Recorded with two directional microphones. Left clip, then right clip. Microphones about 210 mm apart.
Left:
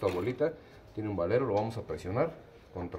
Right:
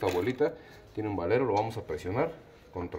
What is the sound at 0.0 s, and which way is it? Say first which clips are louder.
Speech: right 2 dB; 30° right (ahead or behind).